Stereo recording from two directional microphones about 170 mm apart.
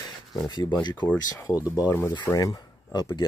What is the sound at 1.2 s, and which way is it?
Speech, 20° left (ahead or behind).